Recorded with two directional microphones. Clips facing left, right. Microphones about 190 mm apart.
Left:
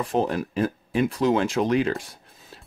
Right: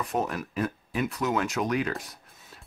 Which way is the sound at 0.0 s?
30° left (ahead or behind).